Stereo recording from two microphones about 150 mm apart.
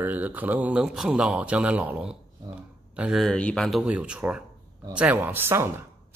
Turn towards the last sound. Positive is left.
turn(degrees=-15)  # may be behind; listen again after turning